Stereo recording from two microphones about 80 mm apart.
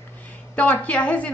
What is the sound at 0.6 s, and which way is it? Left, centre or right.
Speech, centre.